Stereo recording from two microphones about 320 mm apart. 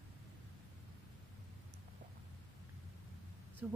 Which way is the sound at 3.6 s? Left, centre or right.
Centre.